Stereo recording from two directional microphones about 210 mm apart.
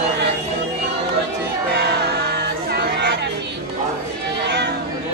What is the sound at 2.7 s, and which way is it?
Chatter, 55° right (ahead or behind).